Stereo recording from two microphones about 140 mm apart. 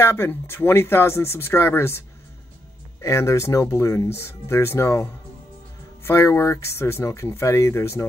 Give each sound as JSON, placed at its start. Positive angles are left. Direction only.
{"t": 0.0, "sound": "speech", "side_deg": 15}